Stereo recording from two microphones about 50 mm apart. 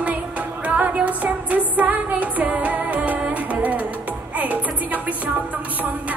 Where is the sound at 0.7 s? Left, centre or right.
Right.